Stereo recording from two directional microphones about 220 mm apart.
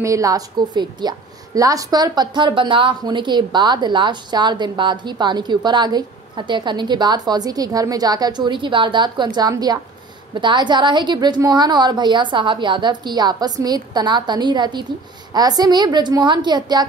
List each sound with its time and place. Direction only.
0.0 s a woman's voice: 15° right (ahead or behind)